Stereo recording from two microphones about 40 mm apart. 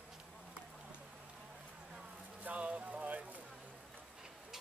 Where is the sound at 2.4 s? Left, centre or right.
Right.